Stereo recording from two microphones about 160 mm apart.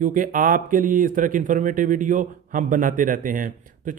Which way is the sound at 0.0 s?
55° right (ahead or behind).